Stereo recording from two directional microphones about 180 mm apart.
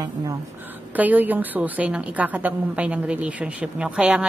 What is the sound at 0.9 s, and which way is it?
A woman's voice, 10° right (ahead or behind).